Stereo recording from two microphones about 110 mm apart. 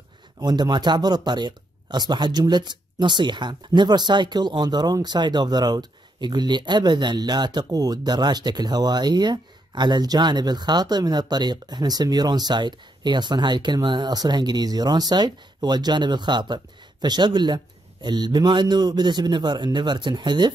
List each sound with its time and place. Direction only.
0.4 s speech: 40° right (ahead or behind)